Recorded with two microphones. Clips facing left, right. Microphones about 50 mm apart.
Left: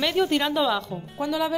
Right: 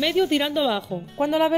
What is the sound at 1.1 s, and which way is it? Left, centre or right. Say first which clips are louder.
Speech: right 5 dB; right.